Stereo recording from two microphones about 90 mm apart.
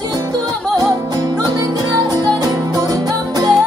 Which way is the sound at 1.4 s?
45° right (ahead or behind).